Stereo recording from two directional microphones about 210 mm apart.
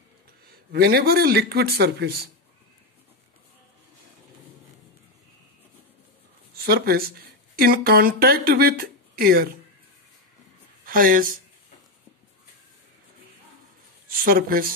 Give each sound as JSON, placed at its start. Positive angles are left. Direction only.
{"t": 0.7, "sound": "speech", "side_deg": -50}
{"t": 6.5, "sound": "speech", "side_deg": -45}
{"t": 10.9, "sound": "speech", "side_deg": -40}
{"t": 14.0, "sound": "speech", "side_deg": -45}